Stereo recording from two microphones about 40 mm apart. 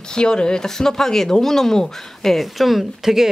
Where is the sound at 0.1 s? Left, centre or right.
Left.